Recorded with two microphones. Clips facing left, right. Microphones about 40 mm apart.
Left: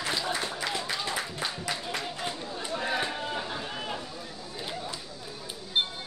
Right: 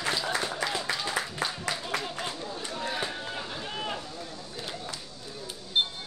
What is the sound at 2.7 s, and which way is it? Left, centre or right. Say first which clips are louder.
Run: left 3 dB; centre.